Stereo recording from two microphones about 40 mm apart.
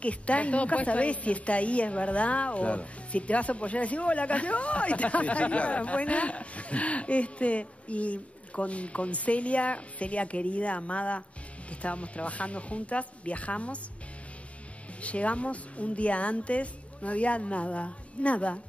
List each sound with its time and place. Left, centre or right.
0.0 s a woman's voice: left
15.0 s a woman's voice: left